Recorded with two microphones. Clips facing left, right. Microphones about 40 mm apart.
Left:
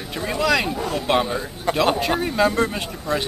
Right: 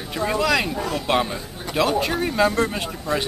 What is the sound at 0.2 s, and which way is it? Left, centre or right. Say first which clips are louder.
Speech: even; centre.